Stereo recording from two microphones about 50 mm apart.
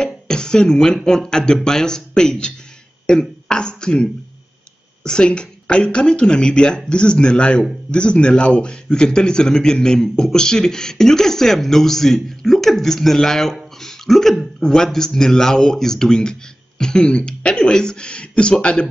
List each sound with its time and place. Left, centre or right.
0.0 s a man's voice: centre
13.8 s throat clearing: centre
14.6 s a man's voice: centre